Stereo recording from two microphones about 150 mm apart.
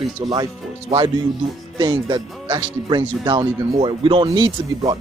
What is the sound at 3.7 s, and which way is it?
Speech, 40° right (ahead or behind).